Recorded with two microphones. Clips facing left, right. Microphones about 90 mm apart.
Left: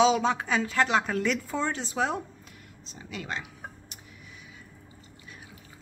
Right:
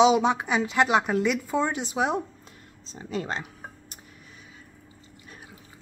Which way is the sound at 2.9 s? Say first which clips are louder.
Right 5 dB; 35° right (ahead or behind).